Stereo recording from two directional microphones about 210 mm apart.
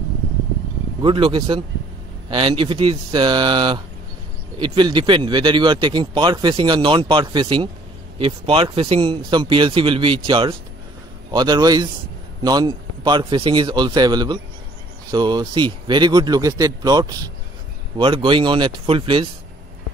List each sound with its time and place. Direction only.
1.0 s speech: 25° right (ahead or behind)